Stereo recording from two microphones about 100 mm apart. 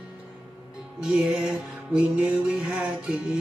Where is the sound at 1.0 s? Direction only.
10° right (ahead or behind).